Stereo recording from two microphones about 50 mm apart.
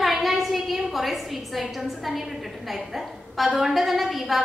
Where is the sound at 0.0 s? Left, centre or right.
Centre.